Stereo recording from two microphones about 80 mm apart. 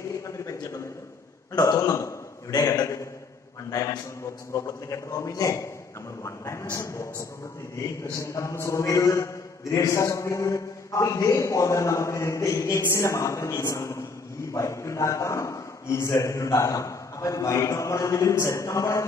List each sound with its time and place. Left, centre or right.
0.5 s a sound: left
1.5 s a man's voice: left
2.5 s a man's voice: left
4.6 s a man's voice: left